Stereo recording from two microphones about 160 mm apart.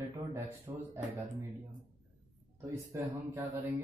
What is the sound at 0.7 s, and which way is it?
Speech, 30° right (ahead or behind).